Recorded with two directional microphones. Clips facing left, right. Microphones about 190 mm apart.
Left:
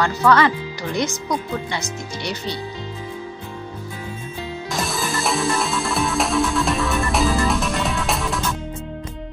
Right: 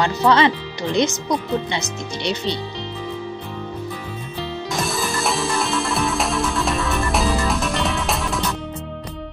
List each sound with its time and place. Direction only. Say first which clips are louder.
0.0 s speech: even; 20° right (ahead or behind)
4.7 s music: even; centre (ahead or behind)